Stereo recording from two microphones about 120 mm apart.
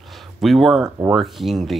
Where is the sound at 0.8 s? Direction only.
25° right (ahead or behind).